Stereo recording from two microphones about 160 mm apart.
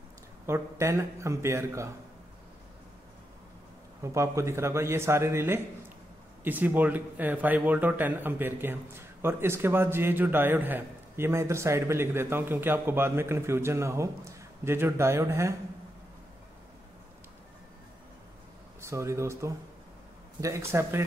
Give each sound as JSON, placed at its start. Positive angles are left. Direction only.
{"t": 0.5, "sound": "a man's voice", "side_deg": -15}
{"t": 4.0, "sound": "a man's voice", "side_deg": -20}
{"t": 18.8, "sound": "a man's voice", "side_deg": -20}